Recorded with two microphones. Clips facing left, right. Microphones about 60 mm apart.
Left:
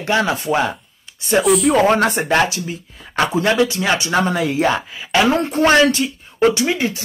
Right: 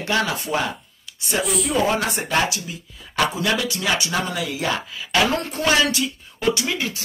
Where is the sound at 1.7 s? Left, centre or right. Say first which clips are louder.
Left 7 dB; left.